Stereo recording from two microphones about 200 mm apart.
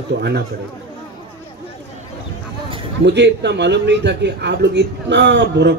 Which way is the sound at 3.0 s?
60° right (ahead or behind).